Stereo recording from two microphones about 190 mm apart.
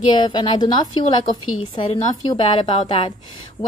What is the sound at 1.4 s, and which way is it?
Speech, 90° left.